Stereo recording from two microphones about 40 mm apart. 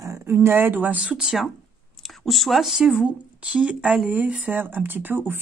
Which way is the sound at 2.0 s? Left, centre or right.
Centre.